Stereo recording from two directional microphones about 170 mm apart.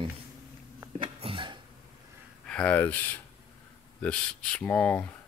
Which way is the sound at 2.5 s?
10° left (ahead or behind).